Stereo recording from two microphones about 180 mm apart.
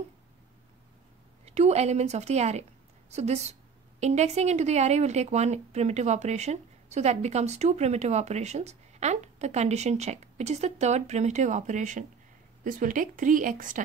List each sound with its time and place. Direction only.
1.4 s a woman's voice: 35° right (ahead or behind)